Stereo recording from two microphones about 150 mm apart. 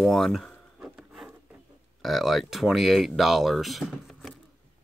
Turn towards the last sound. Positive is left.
turn(degrees=0)  # may be behind; listen again after turning